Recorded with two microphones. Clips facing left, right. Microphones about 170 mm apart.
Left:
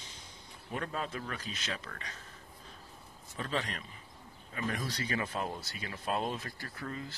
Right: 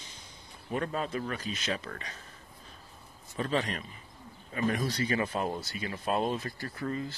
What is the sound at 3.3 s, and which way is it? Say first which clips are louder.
Speech: right 5 dB; 25° right (ahead or behind).